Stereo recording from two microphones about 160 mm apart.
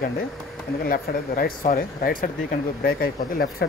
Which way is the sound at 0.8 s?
65° left (ahead or behind).